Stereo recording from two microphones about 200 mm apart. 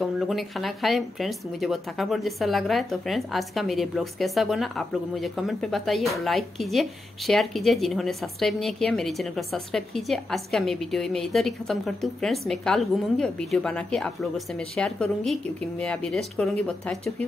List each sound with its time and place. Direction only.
0.0 s a woman's voice: centre (ahead or behind)